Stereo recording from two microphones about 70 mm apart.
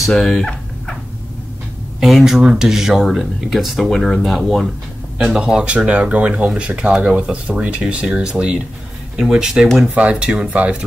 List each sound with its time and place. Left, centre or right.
0.0 s fowl: centre
2.0 s speech: centre
5.2 s speech: centre